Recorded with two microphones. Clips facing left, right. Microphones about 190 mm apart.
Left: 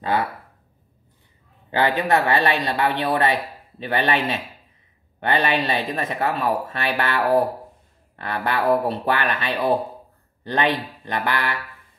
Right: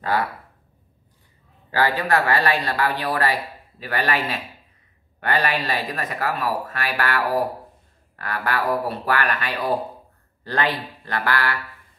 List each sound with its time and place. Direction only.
1.7 s speech: 20° left (ahead or behind)